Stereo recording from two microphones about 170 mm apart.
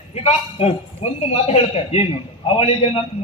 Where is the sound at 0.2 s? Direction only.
35° left (ahead or behind).